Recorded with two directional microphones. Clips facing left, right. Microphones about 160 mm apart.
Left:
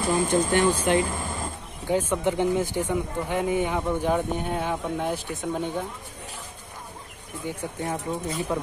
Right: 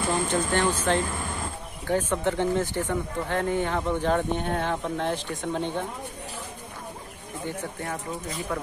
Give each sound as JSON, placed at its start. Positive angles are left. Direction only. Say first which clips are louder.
{"t": 0.1, "sound": "speech", "louder": "left 4 dB", "side_deg": 15}
{"t": 7.4, "sound": "speech", "louder": "left 2 dB", "side_deg": 15}